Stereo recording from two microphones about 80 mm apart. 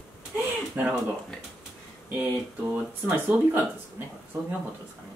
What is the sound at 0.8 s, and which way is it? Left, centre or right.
Speech, right.